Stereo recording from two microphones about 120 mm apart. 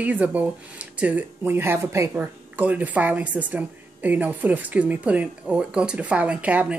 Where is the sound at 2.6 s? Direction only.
15° right (ahead or behind).